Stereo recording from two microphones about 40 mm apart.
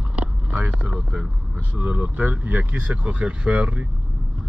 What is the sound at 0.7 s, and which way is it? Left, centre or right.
Speech, right.